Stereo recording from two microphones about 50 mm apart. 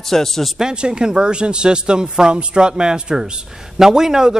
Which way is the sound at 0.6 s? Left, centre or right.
Centre.